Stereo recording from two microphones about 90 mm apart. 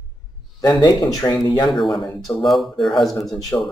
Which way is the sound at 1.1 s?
45° left (ahead or behind).